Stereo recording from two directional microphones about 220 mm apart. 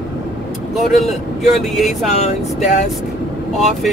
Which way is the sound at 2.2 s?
30° left (ahead or behind).